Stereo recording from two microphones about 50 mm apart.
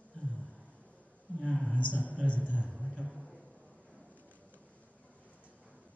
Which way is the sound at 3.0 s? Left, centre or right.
Centre.